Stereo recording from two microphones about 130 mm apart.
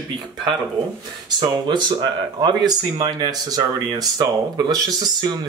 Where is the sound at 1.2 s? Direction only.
35° right (ahead or behind).